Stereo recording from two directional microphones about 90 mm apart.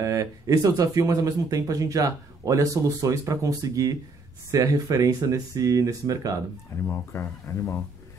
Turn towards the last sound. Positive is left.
turn(degrees=30)  # may be behind; listen again after turning